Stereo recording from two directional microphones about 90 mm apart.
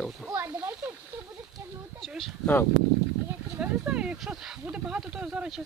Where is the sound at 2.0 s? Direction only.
5° left (ahead or behind).